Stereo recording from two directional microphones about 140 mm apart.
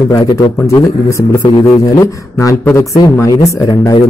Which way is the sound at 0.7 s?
25° left (ahead or behind).